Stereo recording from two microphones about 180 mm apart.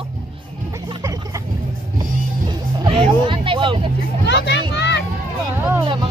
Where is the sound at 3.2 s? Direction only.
30° right (ahead or behind).